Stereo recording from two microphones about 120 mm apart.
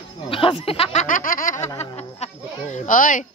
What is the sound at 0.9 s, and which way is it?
Speech, 90° left.